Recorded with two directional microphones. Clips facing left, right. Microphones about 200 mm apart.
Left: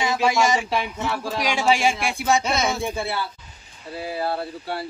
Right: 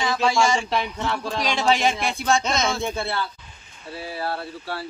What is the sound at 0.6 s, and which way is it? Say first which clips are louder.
Speech: even; 5° left (ahead or behind).